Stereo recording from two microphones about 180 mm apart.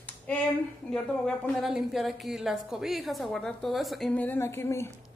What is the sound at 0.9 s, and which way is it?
A woman's voice, 5° left (ahead or behind).